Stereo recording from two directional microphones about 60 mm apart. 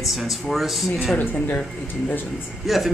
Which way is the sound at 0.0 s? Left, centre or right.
Centre.